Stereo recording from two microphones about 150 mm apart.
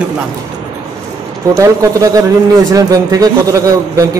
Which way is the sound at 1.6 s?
20° right (ahead or behind).